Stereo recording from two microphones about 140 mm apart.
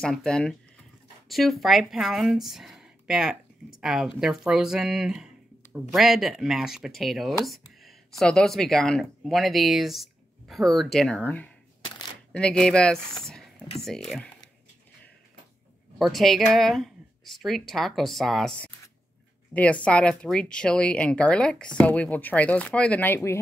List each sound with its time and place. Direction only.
0.0 s speech: 5° left (ahead or behind)
16.0 s speech: centre (ahead or behind); by 23.4 s 15° left (ahead or behind)